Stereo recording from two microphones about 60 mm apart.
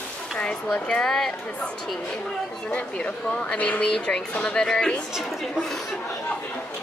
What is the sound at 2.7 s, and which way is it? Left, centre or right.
A woman's voice, centre.